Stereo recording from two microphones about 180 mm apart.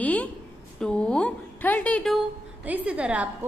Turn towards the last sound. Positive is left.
turn(degrees=-5)  # may be behind; listen again after turning